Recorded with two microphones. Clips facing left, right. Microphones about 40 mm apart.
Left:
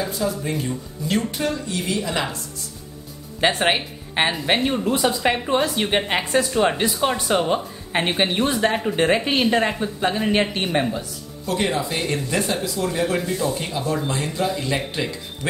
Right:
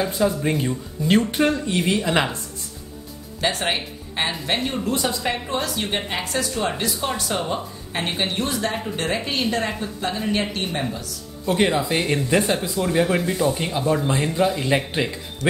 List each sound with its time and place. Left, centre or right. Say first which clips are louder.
0.0 s speech: right 3 dB; right
3.3 s speech: left 4 dB; left
4.7 s speech: left 3 dB; centre
11.4 s speech: right 3 dB; right